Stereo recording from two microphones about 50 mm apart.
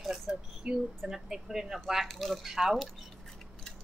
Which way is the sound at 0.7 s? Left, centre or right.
Right.